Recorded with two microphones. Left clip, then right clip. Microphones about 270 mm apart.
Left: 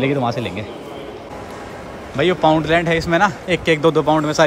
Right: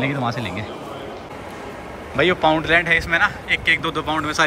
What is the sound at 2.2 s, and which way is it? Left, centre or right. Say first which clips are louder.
Speech: left 2 dB; centre.